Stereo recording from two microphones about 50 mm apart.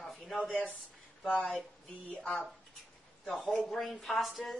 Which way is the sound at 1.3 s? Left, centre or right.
Left.